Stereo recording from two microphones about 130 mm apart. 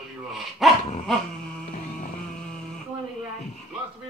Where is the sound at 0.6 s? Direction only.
Centre (ahead or behind).